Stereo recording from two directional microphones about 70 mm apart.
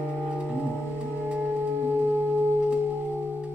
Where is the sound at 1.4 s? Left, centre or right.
Right.